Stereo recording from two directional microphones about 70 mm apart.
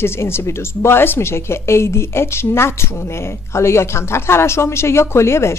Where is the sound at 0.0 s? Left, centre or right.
Left.